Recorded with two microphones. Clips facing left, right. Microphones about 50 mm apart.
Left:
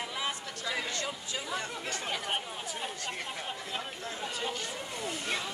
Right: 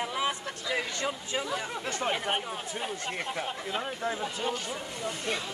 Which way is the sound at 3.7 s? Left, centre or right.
Centre.